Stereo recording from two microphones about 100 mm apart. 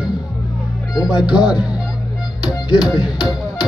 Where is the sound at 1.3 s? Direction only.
10° right (ahead or behind).